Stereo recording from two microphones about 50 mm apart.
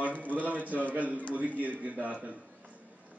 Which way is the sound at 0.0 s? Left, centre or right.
Right.